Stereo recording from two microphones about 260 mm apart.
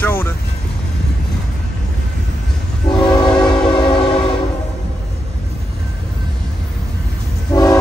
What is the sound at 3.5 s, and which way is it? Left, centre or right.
Train, centre.